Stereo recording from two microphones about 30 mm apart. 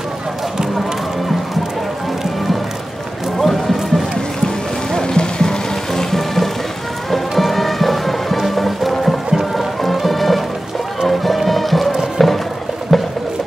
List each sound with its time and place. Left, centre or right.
3.3 s music: centre
4.9 s music: left
5.9 s music: centre
9.3 s music: centre
9.8 s music: centre
12.2 s a sound: centre
12.9 s music: centre